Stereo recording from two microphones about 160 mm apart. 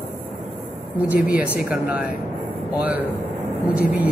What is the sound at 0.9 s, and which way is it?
Speech, 10° right (ahead or behind).